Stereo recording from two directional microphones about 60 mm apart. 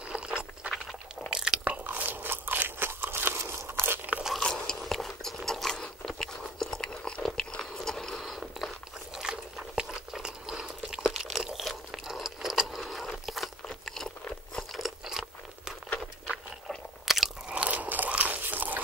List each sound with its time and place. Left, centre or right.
0.1 s a sound: centre
1.3 s biting: centre
1.6 s crunch: right
4.4 s biting: centre
9.1 s a sound: centre
15.0 s crunch: centre
16.6 s chewing: centre
17.5 s biting: right